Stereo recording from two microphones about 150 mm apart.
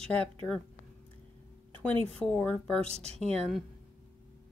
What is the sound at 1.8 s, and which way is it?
Speech, 10° left (ahead or behind).